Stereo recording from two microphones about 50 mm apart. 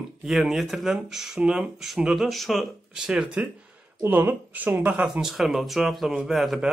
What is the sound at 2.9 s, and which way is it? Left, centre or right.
Speech, centre.